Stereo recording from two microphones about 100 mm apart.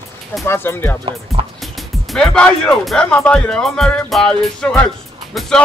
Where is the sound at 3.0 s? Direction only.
10° left (ahead or behind).